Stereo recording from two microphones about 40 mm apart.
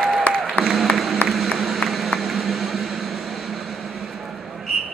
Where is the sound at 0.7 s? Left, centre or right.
Centre.